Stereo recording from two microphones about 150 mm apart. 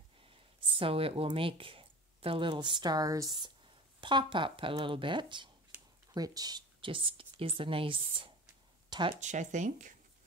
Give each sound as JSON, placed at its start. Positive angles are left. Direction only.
{"t": 0.6, "sound": "speech", "side_deg": -35}
{"t": 9.2, "sound": "speech", "side_deg": -55}